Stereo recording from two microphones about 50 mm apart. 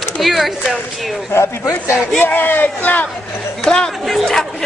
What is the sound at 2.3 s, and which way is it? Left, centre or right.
Speech, left.